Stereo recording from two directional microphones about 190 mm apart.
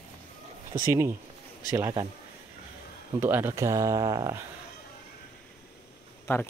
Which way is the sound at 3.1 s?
10° right (ahead or behind).